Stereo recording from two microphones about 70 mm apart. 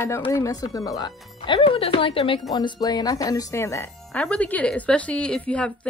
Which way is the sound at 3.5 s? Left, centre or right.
Left.